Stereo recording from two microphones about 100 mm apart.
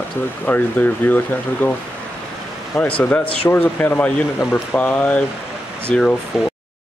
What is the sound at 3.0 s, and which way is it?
Speech, 15° left (ahead or behind).